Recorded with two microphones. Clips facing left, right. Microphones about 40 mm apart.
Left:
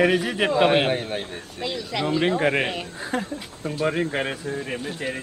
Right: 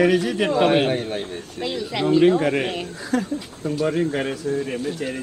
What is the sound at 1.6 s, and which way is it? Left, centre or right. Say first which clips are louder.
Speech: right 3 dB; centre.